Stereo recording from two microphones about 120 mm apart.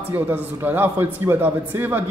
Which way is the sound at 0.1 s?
15° right (ahead or behind).